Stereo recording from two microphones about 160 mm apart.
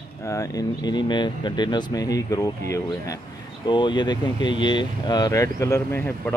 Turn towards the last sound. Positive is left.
turn(degrees=15)  # may be behind; listen again after turning